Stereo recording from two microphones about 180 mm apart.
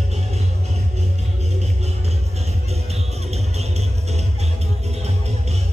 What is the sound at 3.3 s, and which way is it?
Music, 35° right (ahead or behind).